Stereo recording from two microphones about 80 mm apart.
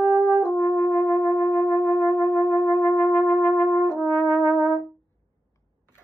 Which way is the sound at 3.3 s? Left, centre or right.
Left.